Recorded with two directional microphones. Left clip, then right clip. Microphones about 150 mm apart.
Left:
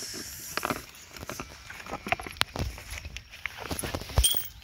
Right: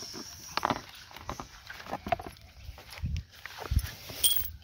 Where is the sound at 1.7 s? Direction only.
10° right (ahead or behind).